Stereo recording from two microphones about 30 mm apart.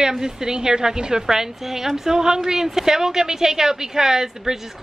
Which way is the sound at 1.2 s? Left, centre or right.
Centre.